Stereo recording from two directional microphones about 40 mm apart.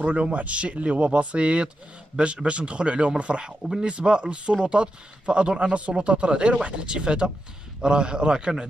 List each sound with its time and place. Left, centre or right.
0.0 s speech: right